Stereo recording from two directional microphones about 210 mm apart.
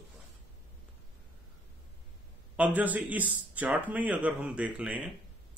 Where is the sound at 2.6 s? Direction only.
10° right (ahead or behind).